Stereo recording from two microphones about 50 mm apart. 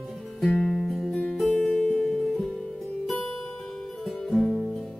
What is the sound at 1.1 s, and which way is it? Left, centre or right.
Music, left.